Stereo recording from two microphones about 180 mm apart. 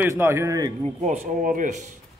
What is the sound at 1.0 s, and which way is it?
Speech, 45° right (ahead or behind).